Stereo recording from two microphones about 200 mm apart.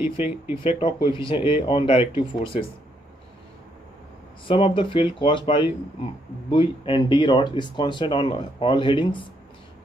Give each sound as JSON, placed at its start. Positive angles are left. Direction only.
{"t": 0.0, "sound": "speech", "side_deg": -10}
{"t": 0.7, "sound": "speech", "side_deg": 30}
{"t": 4.5, "sound": "speech", "side_deg": 25}